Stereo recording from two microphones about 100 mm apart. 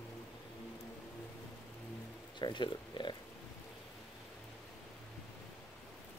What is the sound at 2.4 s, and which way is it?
Speech, 50° left (ahead or behind).